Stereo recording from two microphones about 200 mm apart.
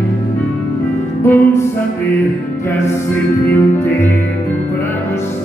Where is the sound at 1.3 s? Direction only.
10° left (ahead or behind).